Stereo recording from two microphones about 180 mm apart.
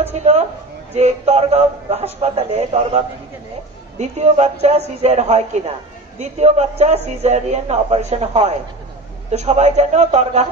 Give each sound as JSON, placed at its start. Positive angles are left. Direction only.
{"t": 0.2, "sound": "a man's voice", "side_deg": -40}
{"t": 4.0, "sound": "a man's voice", "side_deg": -40}